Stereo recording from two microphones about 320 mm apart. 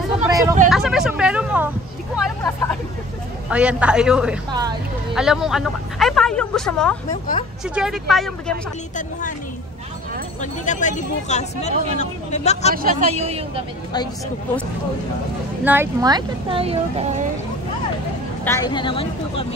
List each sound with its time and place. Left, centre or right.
0.2 s vehicle: centre
0.7 s a woman's voice: centre
5.1 s a woman's voice: centre
10.4 s speech: left
12.7 s a man's voice: right
15.6 s speech: centre
18.4 s speech: centre